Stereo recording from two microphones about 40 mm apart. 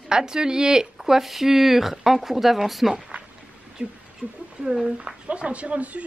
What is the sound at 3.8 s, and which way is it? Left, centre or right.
Speech, right.